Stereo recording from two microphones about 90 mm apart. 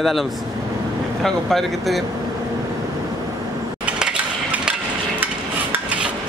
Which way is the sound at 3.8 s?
10° right (ahead or behind).